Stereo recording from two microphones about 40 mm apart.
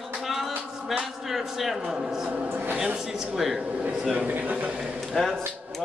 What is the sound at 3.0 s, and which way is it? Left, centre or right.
Speech, centre.